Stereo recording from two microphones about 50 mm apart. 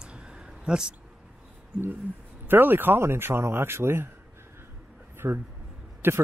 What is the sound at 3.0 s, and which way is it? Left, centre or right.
Speech, right.